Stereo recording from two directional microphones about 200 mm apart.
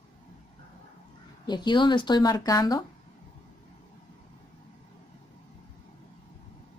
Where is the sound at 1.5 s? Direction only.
20° left (ahead or behind).